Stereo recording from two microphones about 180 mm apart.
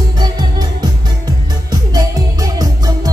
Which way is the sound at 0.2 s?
25° right (ahead or behind).